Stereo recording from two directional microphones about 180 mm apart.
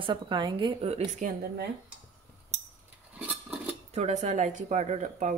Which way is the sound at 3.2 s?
10° right (ahead or behind).